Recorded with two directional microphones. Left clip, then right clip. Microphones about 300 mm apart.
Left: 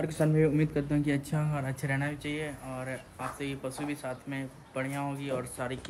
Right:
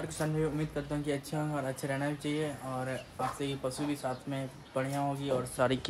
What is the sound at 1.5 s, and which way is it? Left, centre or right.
Speech, centre.